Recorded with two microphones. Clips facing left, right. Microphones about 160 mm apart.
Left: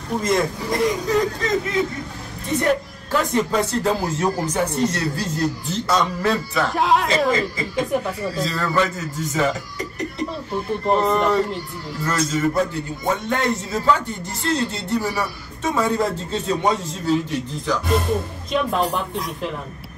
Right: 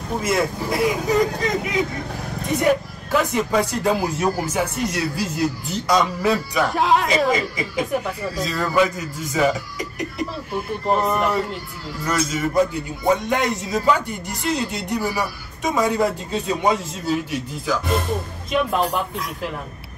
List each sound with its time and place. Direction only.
0.2 s a man's voice: 10° right (ahead or behind)
7.3 s a man's voice: 15° right (ahead or behind)